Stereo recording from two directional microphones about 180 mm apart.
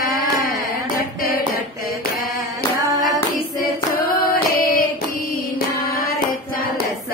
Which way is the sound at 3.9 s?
55° left (ahead or behind).